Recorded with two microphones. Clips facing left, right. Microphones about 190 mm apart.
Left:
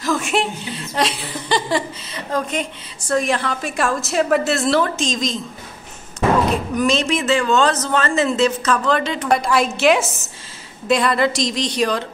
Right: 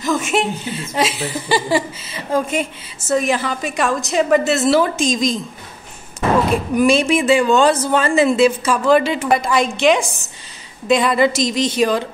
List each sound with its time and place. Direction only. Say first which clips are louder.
0.0 s a woman's voice: right 2 dB; centre (ahead or behind)
6.5 s a man's voice: right 4 dB; 10° right (ahead or behind)